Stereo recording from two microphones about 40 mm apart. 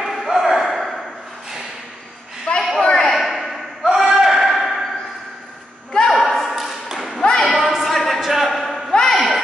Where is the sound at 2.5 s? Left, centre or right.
Left.